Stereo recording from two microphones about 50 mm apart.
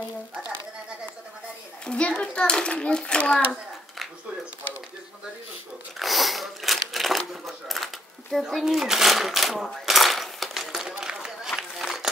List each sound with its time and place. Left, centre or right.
1.9 s a child's voice: left
5.9 s a sound: centre
9.8 s coin: centre
11.2 s run: centre